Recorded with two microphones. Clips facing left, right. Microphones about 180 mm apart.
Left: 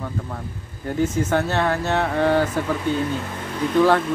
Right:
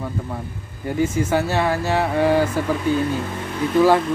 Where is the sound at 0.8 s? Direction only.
10° right (ahead or behind).